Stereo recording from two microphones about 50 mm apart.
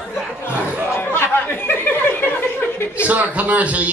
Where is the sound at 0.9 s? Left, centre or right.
Left.